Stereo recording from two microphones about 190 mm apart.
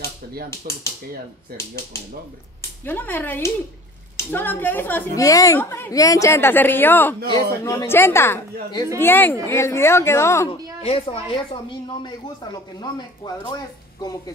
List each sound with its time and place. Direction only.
0.7 s speech: 45° right (ahead or behind)
2.8 s a woman's voice: 10° left (ahead or behind)
10.8 s a woman's voice: 30° left (ahead or behind)